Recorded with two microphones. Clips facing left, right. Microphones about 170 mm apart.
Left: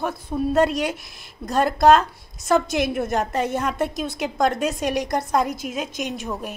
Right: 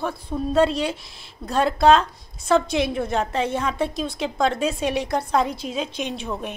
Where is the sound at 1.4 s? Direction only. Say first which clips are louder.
Left 1 dB; 5° left (ahead or behind).